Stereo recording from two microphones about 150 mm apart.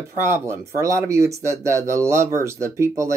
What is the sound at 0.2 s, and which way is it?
Speech, 15° right (ahead or behind).